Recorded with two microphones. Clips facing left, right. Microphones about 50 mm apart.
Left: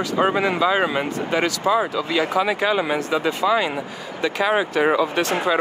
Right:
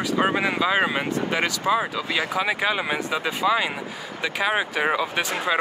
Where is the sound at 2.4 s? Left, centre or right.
Centre.